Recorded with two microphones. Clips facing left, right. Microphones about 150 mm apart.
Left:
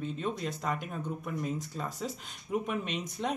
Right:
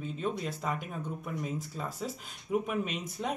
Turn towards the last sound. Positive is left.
turn(degrees=-5)  # may be behind; listen again after turning